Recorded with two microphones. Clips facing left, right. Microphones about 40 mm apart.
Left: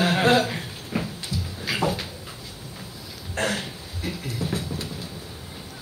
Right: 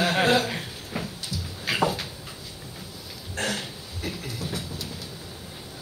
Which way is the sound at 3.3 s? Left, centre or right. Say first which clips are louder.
Left 3 dB; left.